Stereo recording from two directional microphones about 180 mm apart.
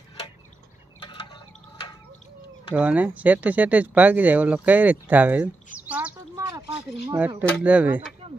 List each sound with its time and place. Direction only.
1.0 s a sound: 25° left (ahead or behind)
2.8 s speech: 10° right (ahead or behind)
8.2 s mechanisms: 30° right (ahead or behind)